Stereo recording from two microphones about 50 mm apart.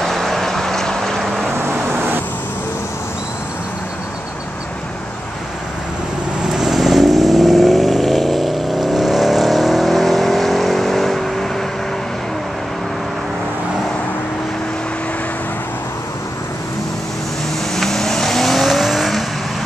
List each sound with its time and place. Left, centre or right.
0.0 s vehicle: centre
6.4 s vehicle: centre
17.7 s vehicle: centre